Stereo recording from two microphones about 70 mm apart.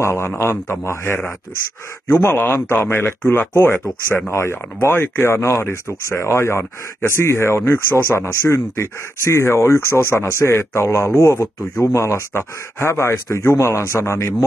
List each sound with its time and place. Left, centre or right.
0.0 s speech: left